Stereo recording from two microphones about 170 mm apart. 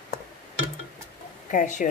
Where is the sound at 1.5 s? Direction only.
50° left (ahead or behind).